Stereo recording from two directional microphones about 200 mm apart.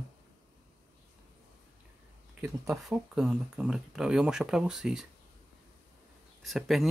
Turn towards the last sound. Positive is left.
turn(degrees=0)  # may be behind; listen again after turning